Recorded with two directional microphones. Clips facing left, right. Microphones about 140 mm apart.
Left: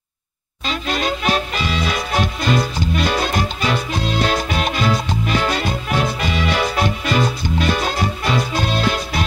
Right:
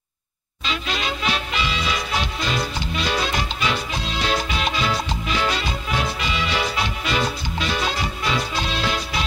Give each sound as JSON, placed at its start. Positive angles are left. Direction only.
{"t": 0.7, "sound": "music", "side_deg": 45}